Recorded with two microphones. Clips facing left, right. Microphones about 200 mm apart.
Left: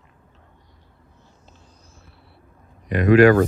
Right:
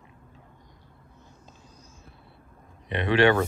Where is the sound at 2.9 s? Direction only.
25° right (ahead or behind).